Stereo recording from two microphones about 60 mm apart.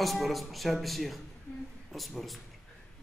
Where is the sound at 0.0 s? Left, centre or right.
Centre.